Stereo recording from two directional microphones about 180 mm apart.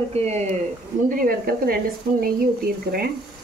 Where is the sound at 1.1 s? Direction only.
55° right (ahead or behind).